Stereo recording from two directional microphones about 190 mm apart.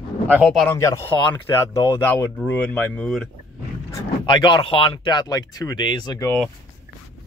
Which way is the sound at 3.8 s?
20° left (ahead or behind).